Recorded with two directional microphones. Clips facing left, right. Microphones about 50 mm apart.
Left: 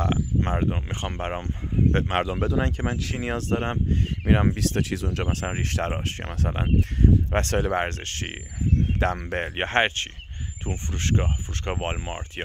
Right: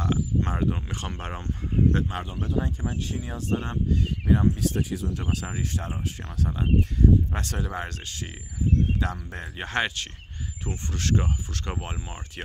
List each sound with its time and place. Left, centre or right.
0.0 s speech: left
2.0 s speech: left
4.3 s speech: left
5.7 s speech: left
9.7 s speech: left
11.8 s speech: left